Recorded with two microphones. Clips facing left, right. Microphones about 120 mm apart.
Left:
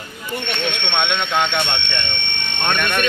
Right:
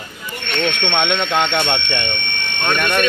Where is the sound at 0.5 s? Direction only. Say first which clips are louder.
Right 6 dB; 15° left (ahead or behind).